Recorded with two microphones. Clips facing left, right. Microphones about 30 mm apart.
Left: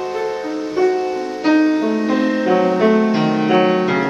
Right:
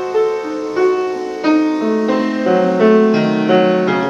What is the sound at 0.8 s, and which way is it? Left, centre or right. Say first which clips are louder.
Music: right 2 dB; right.